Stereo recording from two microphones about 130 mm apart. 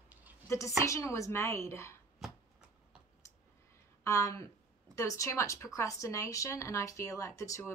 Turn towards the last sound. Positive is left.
turn(degrees=25)  # may be behind; listen again after turning